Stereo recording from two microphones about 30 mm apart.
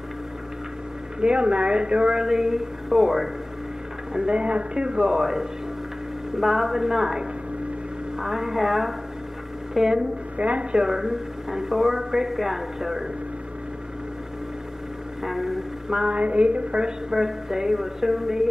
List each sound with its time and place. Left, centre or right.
1.2 s speech: right
2.1 s speech: centre
4.1 s speech: right
5.2 s speech: centre
10.3 s a woman's voice: right
10.8 s speech: centre
15.2 s speech: centre
16.1 s speech: right
17.1 s speech: centre